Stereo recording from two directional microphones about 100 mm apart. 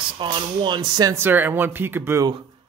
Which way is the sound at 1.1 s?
20° right (ahead or behind).